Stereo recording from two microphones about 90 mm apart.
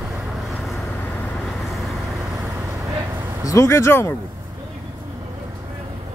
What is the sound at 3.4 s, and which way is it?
Speech, 35° left (ahead or behind).